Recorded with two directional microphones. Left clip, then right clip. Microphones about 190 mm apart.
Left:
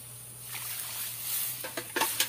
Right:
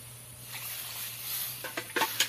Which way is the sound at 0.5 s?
Centre (ahead or behind).